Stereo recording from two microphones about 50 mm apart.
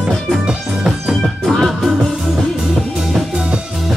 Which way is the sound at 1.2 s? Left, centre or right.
Centre.